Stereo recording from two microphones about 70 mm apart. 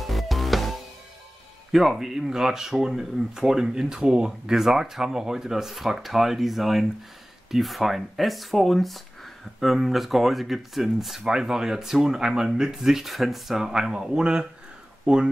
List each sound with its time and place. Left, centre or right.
0.0 s music: centre
1.7 s speech: centre